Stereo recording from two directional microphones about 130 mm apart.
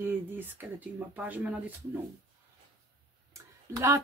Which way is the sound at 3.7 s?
20° right (ahead or behind).